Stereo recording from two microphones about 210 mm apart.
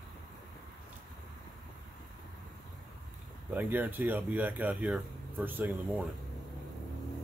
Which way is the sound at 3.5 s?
10° right (ahead or behind).